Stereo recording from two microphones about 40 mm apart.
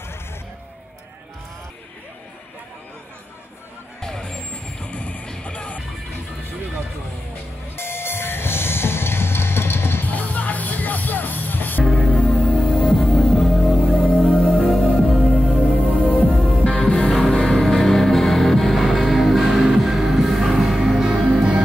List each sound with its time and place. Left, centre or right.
4.0 s vehicle: centre
4.4 s vehicle: left
5.2 s music: left
5.5 s music: left
7.7 s music: left
10.0 s music: left
11.8 s music: centre
12.2 s music: left
13.2 s music: centre
13.9 s music: left
14.8 s music: centre
15.3 s music: left
16.4 s music: left
17.1 s music: centre